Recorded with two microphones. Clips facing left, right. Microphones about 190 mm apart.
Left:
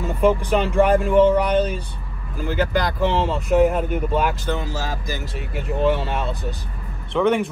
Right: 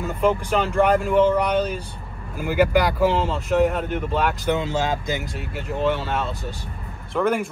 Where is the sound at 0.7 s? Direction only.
Centre (ahead or behind).